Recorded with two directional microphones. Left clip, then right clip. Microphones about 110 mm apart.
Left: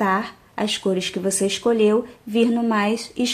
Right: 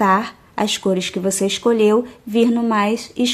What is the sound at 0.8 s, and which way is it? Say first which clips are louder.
Speech: right 3 dB; 25° right (ahead or behind).